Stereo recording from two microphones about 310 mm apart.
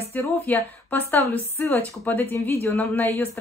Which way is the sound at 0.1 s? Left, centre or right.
Centre.